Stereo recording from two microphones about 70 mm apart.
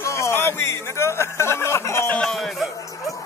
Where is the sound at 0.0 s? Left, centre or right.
Left.